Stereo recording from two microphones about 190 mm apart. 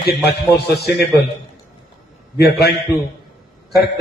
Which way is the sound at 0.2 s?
60° left (ahead or behind).